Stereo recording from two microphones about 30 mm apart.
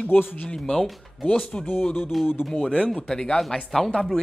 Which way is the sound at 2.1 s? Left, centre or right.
Centre.